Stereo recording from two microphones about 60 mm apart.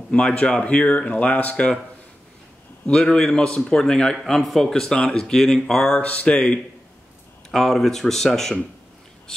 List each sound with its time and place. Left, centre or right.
0.1 s speech: centre
2.9 s speech: centre
4.2 s speech: centre
6.0 s speech: centre
7.5 s speech: centre